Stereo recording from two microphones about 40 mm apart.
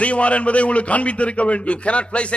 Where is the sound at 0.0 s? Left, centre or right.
Left.